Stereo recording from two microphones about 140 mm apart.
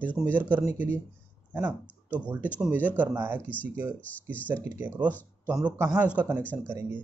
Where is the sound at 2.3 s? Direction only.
10° right (ahead or behind).